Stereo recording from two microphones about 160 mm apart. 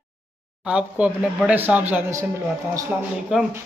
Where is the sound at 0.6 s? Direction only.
5° right (ahead or behind).